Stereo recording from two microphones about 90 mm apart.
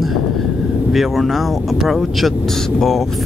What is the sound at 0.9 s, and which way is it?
Speech, centre (ahead or behind).